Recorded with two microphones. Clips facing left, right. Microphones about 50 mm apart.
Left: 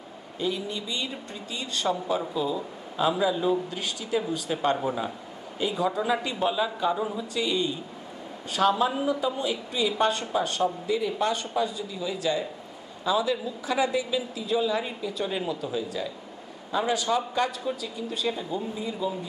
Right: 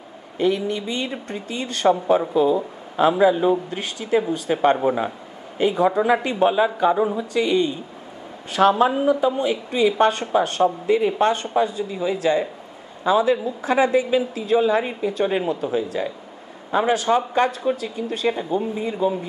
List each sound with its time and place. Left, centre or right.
0.4 s speech: right